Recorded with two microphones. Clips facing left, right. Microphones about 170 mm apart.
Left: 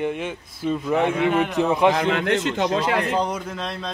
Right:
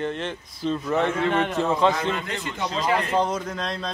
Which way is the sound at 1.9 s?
80° left.